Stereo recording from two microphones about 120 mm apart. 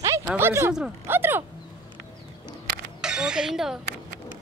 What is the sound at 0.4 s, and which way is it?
Speech, 20° right (ahead or behind).